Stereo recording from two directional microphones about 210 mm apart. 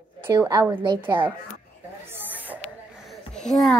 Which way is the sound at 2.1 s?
10° right (ahead or behind).